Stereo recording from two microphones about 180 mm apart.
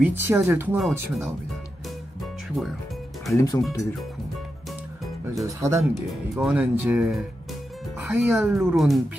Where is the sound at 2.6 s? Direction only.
Centre (ahead or behind).